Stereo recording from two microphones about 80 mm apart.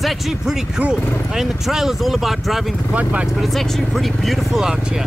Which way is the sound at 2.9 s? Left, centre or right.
Centre.